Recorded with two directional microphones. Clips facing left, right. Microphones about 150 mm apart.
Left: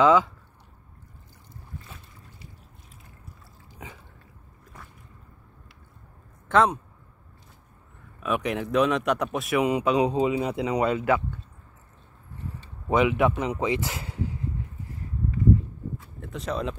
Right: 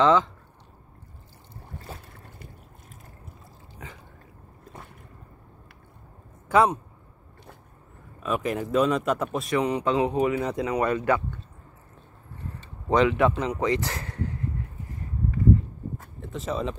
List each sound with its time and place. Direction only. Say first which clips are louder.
0.0 s speech: left 1 dB; 10° left (ahead or behind)
1.9 s boat: right 6 dB; 35° right (ahead or behind)
2.2 s a sound: right 3 dB; 55° right (ahead or behind)
3.7 s a sound: even; 10° left (ahead or behind)
6.5 s speech: right 1 dB; 5° right (ahead or behind)
8.2 s speech: even; centre (ahead or behind)
9.6 s speech: left 2 dB; 10° left (ahead or behind)
12.8 s speech: right 1 dB; 10° left (ahead or behind)
13.7 s speech: right 1 dB; 20° left (ahead or behind)
14.0 s a sound: even; 10° left (ahead or behind)
16.2 s speech: right 1 dB; centre (ahead or behind)